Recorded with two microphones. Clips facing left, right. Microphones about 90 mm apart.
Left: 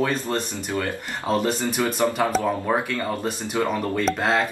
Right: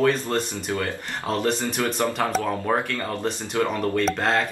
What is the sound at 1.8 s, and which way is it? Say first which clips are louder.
Speech: left 3 dB; 20° left (ahead or behind).